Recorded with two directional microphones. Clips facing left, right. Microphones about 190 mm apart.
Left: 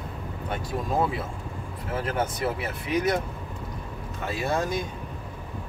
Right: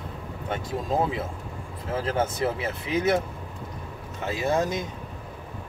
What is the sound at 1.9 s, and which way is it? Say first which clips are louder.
Speech: right 2 dB; 30° right (ahead or behind).